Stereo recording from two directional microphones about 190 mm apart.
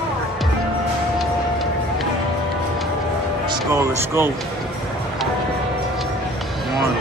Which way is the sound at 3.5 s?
15° right (ahead or behind).